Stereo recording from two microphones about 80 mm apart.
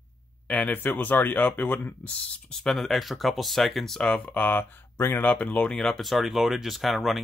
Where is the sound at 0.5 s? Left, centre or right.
Centre.